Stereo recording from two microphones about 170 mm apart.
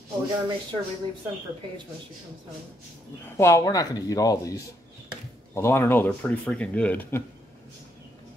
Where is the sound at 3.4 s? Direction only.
20° left (ahead or behind).